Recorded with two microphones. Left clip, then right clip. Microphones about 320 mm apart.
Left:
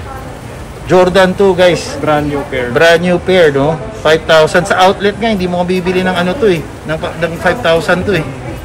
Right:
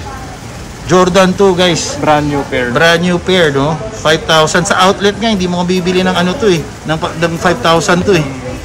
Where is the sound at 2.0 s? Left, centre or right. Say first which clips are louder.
Right 2 dB; right.